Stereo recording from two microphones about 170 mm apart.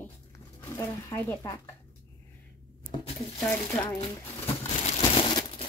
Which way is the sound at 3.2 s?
15° left (ahead or behind).